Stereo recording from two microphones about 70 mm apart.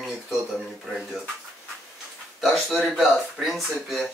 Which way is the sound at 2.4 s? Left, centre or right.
Centre.